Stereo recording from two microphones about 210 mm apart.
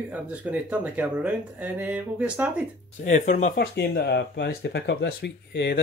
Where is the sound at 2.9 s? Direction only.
35° left (ahead or behind).